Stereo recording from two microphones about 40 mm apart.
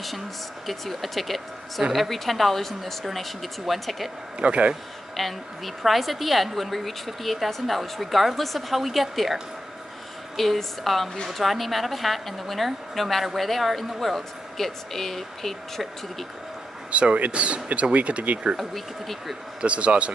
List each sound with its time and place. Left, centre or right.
0.7 s a woman's voice: centre
4.4 s speech: right
5.2 s a woman's voice: centre
16.9 s speech: right
18.6 s a woman's voice: centre
19.6 s speech: right